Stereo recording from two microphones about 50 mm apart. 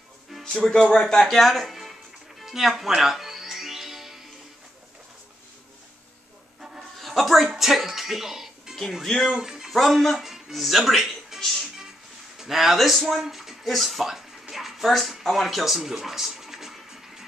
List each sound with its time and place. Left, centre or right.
0.5 s speech: centre
2.4 s music: centre
7.0 s music: centre
9.0 s speech: centre
9.3 s speech: centre
14.5 s a sound: centre